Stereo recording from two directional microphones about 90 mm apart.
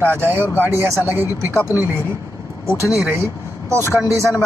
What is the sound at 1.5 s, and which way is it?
Speech, 30° left (ahead or behind).